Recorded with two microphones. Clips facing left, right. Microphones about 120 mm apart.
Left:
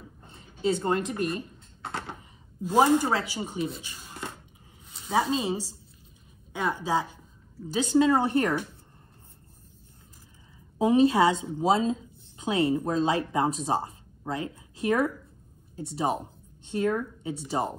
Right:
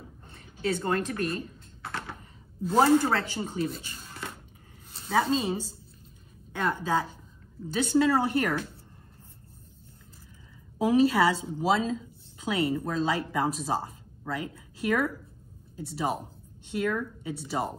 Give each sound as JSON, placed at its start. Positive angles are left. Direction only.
{"t": 0.3, "sound": "typing", "side_deg": 20}
{"t": 2.6, "sound": "speech", "side_deg": 15}
{"t": 3.8, "sound": "a sound", "side_deg": 15}
{"t": 5.3, "sound": "speech", "side_deg": 20}
{"t": 6.7, "sound": "speech", "side_deg": 20}
{"t": 10.8, "sound": "speech", "side_deg": 25}